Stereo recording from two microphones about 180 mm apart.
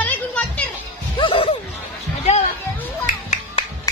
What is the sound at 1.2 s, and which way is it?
Music, 30° left (ahead or behind).